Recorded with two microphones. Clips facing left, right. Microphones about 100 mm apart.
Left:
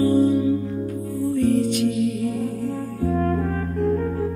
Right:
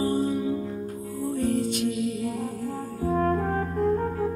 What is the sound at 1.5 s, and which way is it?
Music, 60° left (ahead or behind).